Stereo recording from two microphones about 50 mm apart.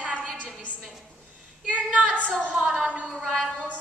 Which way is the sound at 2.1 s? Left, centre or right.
Centre.